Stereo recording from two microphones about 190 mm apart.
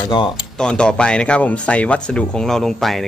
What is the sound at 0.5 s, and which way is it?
Speech, 5° left (ahead or behind).